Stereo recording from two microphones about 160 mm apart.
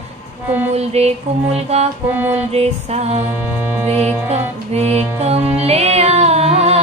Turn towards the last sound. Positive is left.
turn(degrees=-40)  # may be behind; listen again after turning